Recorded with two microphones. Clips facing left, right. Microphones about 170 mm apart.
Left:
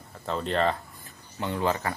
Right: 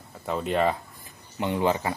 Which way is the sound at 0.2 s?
10° right (ahead or behind).